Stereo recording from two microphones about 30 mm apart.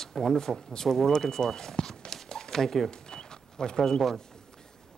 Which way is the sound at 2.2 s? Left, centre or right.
Centre.